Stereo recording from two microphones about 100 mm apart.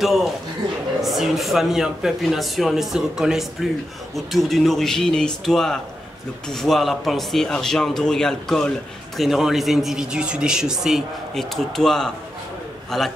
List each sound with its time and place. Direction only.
0.0 s a man's voice: centre (ahead or behind)